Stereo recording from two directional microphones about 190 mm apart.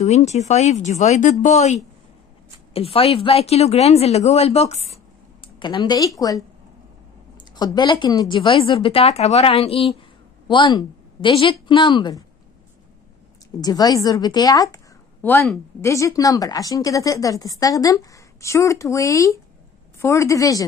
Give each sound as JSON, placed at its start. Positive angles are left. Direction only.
{"t": 0.0, "sound": "speech", "side_deg": 35}
{"t": 5.6, "sound": "a woman's voice", "side_deg": 20}
{"t": 13.6, "sound": "a woman's voice", "side_deg": 20}